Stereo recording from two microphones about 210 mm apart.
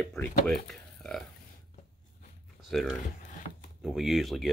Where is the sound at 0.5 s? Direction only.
Centre (ahead or behind).